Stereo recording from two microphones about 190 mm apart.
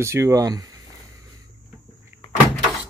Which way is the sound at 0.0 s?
15° right (ahead or behind).